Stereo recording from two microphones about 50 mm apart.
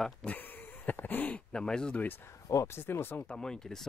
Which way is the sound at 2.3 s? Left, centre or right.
Left.